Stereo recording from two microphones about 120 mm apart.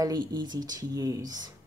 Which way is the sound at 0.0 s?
35° right (ahead or behind).